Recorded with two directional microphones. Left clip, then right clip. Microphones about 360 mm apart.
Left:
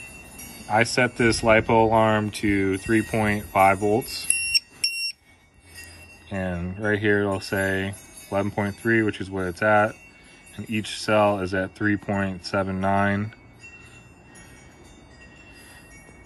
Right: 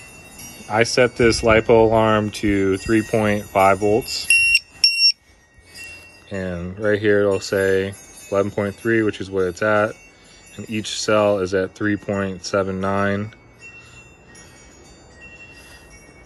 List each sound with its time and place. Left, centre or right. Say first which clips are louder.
0.7 s speech: right 4 dB; centre
4.3 s alarm: right 11 dB; right
6.2 s speech: right 2 dB; centre